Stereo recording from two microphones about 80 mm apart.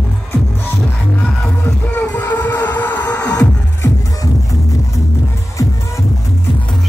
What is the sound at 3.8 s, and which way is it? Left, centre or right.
Music, left.